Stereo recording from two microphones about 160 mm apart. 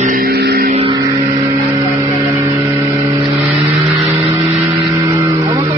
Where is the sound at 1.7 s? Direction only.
20° right (ahead or behind).